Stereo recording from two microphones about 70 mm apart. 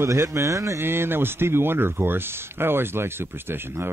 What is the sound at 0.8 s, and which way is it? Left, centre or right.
Speech, right.